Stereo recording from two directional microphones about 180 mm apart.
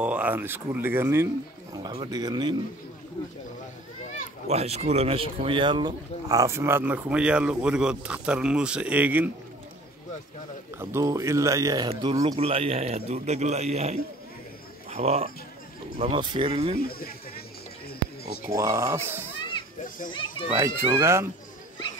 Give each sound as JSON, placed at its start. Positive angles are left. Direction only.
{"t": 0.0, "sound": "speech", "side_deg": -10}
{"t": 4.5, "sound": "speech", "side_deg": -35}
{"t": 10.8, "sound": "speech", "side_deg": -15}
{"t": 11.9, "sound": "speech", "side_deg": -30}
{"t": 16.8, "sound": "speech", "side_deg": 55}
{"t": 18.5, "sound": "speech", "side_deg": -15}
{"t": 20.1, "sound": "speech", "side_deg": 25}
{"t": 20.5, "sound": "speech", "side_deg": -15}